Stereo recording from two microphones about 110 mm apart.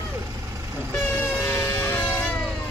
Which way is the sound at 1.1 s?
15° left (ahead or behind).